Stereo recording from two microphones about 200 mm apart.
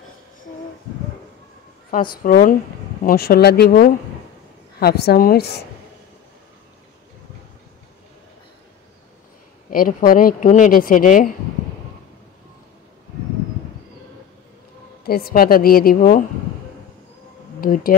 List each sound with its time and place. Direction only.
1.9 s speech: 45° left (ahead or behind)
9.7 s speech: 45° left (ahead or behind)
15.0 s speech: 50° left (ahead or behind)
17.6 s speech: 45° left (ahead or behind)